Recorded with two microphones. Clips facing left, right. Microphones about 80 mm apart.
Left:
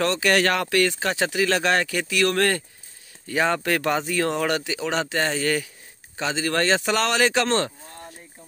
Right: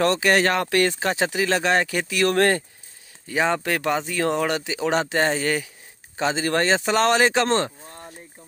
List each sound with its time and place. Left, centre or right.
0.2 s speech: right
3.3 s speech: centre
6.1 s speech: right